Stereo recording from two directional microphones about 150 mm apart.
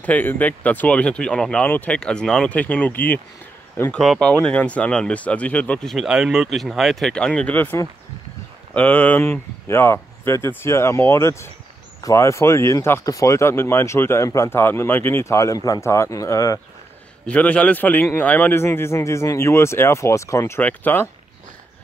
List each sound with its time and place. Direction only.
0.0 s a man's voice: 10° left (ahead or behind)
4.0 s speech: centre (ahead or behind)
4.3 s a man's voice: 10° left (ahead or behind)
17.3 s a man's voice: 10° left (ahead or behind)